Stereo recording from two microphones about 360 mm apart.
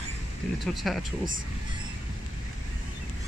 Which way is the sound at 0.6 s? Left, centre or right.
Centre.